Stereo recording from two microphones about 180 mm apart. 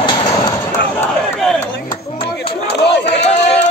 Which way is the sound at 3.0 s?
70° left (ahead or behind).